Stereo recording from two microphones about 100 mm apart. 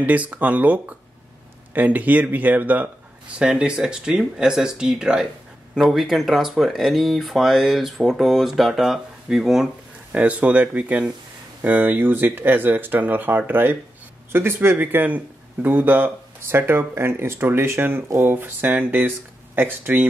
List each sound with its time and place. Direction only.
0.0 s speech: 15° right (ahead or behind)